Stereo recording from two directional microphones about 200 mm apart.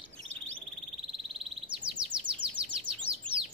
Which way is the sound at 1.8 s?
25° right (ahead or behind).